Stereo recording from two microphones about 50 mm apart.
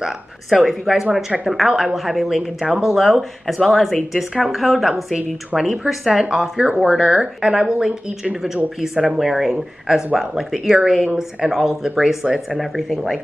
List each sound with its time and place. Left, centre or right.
0.0 s speech: centre
6.5 s speech: right
6.8 s speech: centre
12.5 s speech: centre